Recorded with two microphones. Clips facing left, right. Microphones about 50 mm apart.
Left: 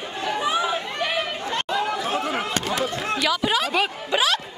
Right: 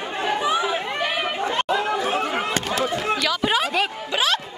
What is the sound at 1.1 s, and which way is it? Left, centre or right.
Chatter, centre.